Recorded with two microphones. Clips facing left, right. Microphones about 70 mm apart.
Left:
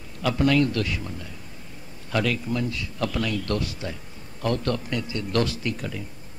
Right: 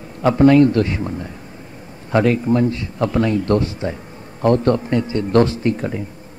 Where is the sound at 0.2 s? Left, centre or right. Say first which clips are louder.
Right 10 dB; right.